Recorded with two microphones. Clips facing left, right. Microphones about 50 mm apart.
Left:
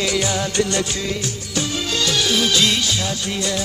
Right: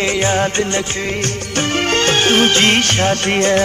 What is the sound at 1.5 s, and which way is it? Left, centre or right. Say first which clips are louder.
Music: right 7 dB; right.